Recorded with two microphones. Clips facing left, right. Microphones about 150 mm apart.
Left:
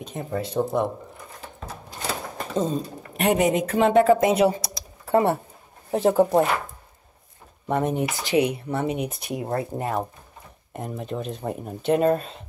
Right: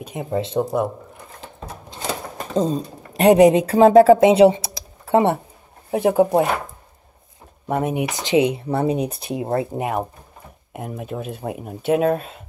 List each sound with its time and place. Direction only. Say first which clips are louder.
0.0 s speech: right 4 dB; 10° right (ahead or behind)
2.5 s speech: right 4 dB; 35° right (ahead or behind)
5.9 s speech: right 2 dB; 10° right (ahead or behind)
7.6 s speech: right 2 dB; 10° right (ahead or behind)
8.1 s speech: right 4 dB; 25° right (ahead or behind); by 12.4 s 5° right (ahead or behind)